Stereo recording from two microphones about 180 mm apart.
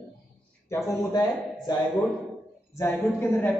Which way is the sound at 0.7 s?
20° left (ahead or behind).